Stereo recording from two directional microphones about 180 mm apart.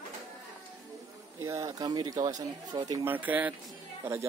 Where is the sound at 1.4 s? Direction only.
15° right (ahead or behind).